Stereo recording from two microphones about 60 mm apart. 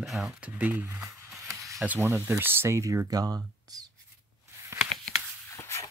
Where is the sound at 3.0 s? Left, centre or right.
Right.